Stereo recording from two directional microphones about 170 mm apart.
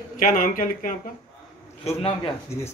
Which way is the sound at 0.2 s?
55° left (ahead or behind).